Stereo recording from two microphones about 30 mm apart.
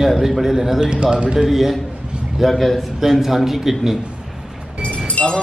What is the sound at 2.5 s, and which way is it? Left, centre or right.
Speech, centre.